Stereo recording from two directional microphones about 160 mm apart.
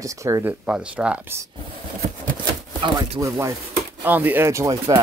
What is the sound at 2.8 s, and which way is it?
Speech, 30° right (ahead or behind).